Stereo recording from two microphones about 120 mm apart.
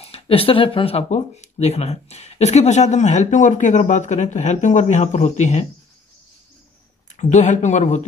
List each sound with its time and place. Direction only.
0.0 s speech: 55° left (ahead or behind); by 5.7 s 75° left (ahead or behind)
7.1 s speech: 90° left